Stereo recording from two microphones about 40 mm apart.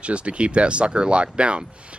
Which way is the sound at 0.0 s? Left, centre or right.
Right.